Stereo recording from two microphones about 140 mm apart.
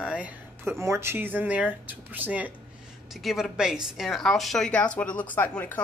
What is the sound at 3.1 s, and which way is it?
A woman's voice, centre (ahead or behind).